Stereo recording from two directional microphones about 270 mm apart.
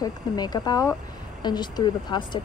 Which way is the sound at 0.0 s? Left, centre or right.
Centre.